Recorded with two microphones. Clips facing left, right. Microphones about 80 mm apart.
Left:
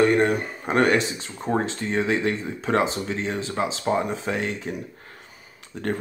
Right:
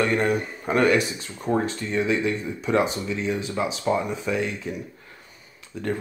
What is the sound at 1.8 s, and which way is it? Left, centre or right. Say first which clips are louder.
Speech: even; left.